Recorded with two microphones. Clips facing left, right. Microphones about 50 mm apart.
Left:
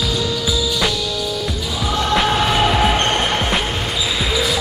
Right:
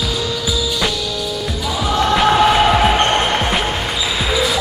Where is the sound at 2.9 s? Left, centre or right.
Centre.